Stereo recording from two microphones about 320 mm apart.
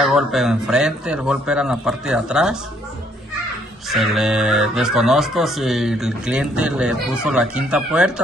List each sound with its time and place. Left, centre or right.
0.0 s speech: centre
3.9 s speech: centre